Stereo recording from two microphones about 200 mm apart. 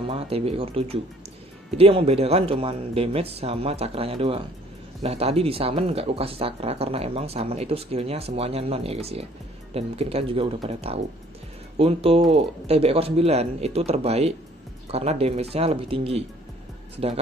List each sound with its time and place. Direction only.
0.0 s speech: 30° right (ahead or behind)